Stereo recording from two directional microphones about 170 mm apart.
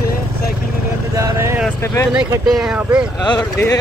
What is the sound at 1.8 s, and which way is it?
Speech, 15° left (ahead or behind).